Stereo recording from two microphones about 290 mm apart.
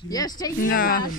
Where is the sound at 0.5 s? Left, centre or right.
Left.